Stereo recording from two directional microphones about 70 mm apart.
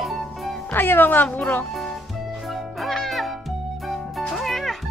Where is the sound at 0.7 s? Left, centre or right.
Left.